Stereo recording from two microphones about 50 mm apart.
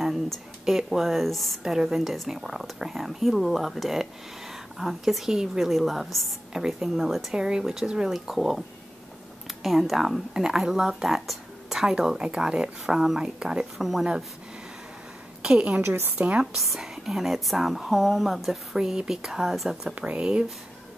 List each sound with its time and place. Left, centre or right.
0.0 s speech: centre
1.6 s speech: centre
7.3 s speech: centre
12.2 s speech: centre
15.4 s speech: centre
15.8 s a woman's voice: right
16.5 s speech: centre
20.2 s speech: centre